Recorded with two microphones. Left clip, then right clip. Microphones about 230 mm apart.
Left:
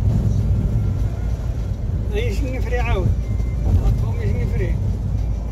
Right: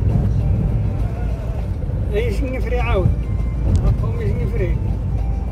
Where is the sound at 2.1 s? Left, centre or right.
Centre.